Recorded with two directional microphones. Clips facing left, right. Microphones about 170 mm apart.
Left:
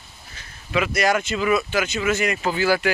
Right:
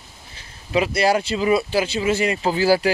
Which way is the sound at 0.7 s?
30° right (ahead or behind).